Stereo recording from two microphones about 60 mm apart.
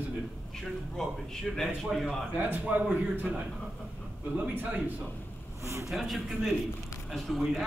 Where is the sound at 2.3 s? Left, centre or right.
Right.